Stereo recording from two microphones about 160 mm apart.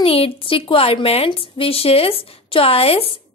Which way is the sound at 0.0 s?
35° left (ahead or behind).